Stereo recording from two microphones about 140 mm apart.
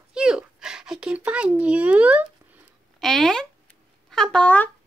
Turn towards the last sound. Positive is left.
turn(degrees=10)  # may be behind; listen again after turning